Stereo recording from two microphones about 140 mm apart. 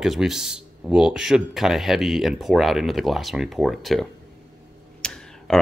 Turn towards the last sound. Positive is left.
turn(degrees=5)  # may be behind; listen again after turning